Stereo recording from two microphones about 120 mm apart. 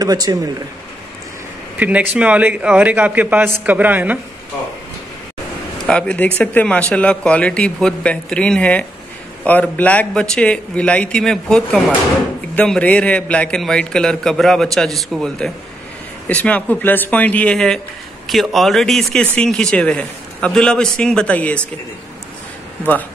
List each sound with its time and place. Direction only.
0.0 s speech: 30° right (ahead or behind)
1.8 s a man's voice: 10° right (ahead or behind)
5.8 s speech: 5° left (ahead or behind)